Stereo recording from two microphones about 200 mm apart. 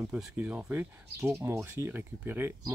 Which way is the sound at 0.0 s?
5° right (ahead or behind).